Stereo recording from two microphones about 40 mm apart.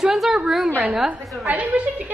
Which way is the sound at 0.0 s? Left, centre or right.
Centre.